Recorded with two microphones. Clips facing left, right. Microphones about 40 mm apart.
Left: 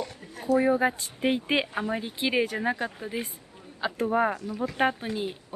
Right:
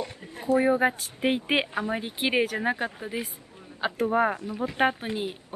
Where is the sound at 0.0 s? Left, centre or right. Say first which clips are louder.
Right 1 dB; right.